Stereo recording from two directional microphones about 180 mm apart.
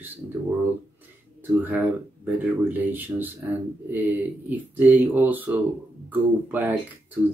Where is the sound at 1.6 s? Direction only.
10° right (ahead or behind).